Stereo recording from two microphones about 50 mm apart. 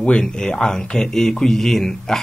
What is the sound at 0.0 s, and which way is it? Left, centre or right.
Speech, centre.